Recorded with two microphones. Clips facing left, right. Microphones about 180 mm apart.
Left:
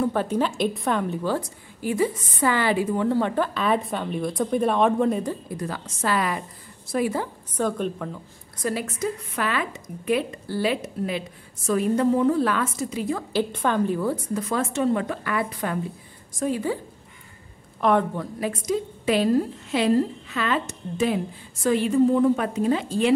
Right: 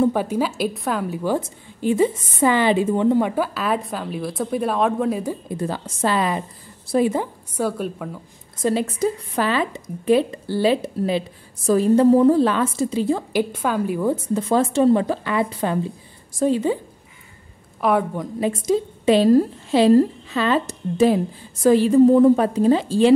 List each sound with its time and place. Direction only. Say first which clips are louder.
0.1 s a woman's voice: right 2 dB; 10° right (ahead or behind)
5.5 s speech: right 5 dB; 30° right (ahead or behind)
7.5 s a woman's voice: right 1 dB; 5° right (ahead or behind)
8.5 s speech: right 6 dB; 25° right (ahead or behind)
13.3 s a woman's voice: right 2 dB; 10° right (ahead or behind)
14.1 s speech: right 6 dB; 25° right (ahead or behind)
17.7 s a woman's voice: right 1 dB; 5° right (ahead or behind)
18.5 s a woman's voice: right 7 dB; 30° right (ahead or behind)